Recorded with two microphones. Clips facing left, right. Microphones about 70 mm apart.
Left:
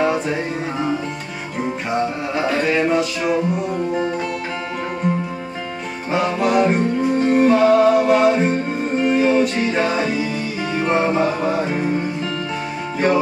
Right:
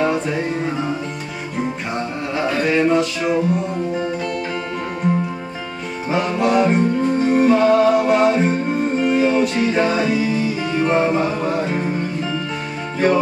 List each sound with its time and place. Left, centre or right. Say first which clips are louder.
0.0 s music: even; centre
2.0 s music: left 3 dB; centre
5.0 s music: right 3 dB; centre